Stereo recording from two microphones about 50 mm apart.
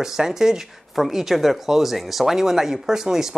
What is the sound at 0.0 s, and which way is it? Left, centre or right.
Speech, centre.